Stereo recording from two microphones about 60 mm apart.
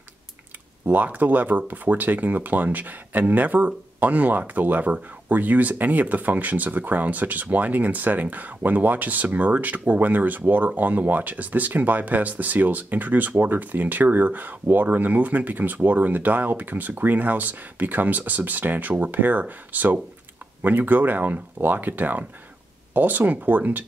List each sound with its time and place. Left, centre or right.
0.8 s speech: right